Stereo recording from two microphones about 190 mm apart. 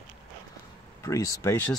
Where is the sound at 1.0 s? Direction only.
15° left (ahead or behind).